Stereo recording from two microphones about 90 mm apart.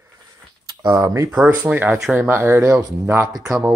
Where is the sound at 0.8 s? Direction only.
40° right (ahead or behind).